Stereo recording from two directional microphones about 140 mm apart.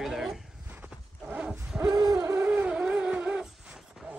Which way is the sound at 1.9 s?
25° right (ahead or behind).